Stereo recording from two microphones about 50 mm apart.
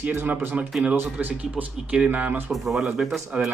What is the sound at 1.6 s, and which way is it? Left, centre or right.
Speech, right.